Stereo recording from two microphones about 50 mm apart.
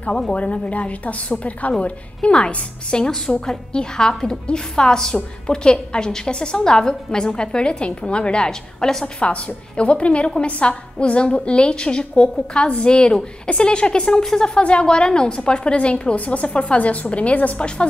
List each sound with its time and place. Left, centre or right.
0.3 s a woman's voice: left
9.2 s a woman's voice: left
14.6 s a woman's voice: left